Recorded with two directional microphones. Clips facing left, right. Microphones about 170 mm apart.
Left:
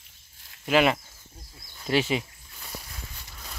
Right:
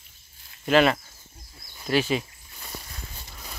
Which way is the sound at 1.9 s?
25° left (ahead or behind).